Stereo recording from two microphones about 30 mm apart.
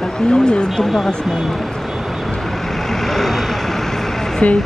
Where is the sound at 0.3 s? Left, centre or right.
Left.